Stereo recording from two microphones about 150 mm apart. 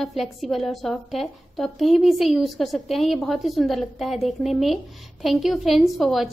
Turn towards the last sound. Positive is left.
turn(degrees=0)  # may be behind; listen again after turning